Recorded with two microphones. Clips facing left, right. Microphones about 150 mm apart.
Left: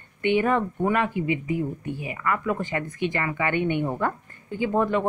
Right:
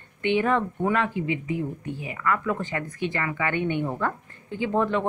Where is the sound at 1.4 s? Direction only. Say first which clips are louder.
Left 2 dB; 50° left (ahead or behind).